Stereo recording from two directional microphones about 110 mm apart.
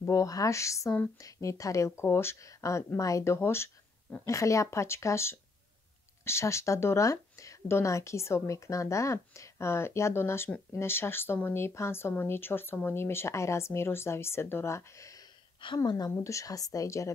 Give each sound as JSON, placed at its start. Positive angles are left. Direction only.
{"t": 0.0, "sound": "speech", "side_deg": 30}
{"t": 15.6, "sound": "a woman's voice", "side_deg": 45}